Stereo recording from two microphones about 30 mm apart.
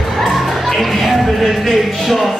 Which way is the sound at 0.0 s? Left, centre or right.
Centre.